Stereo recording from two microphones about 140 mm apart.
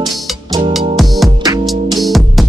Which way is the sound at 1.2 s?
25° right (ahead or behind).